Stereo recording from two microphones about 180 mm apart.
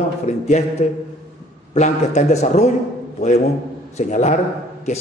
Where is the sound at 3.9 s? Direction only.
40° left (ahead or behind).